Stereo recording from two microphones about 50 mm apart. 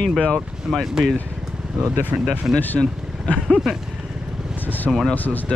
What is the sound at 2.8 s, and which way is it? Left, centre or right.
Speech, centre.